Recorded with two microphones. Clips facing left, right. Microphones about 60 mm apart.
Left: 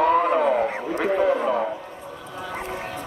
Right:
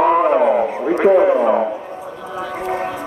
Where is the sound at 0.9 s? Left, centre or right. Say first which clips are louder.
Right 9 dB; right.